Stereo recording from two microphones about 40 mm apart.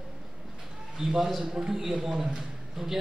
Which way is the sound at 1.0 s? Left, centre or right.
Centre.